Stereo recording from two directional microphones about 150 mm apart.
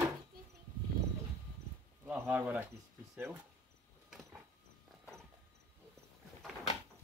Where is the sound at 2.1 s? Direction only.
10° right (ahead or behind).